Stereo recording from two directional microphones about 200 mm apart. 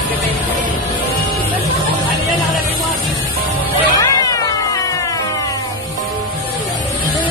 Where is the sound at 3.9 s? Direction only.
15° left (ahead or behind).